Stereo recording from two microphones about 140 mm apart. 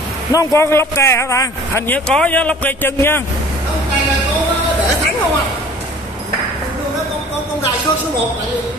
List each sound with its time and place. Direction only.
0.3 s a man's voice: 20° left (ahead or behind)
2.0 s a man's voice: 10° left (ahead or behind)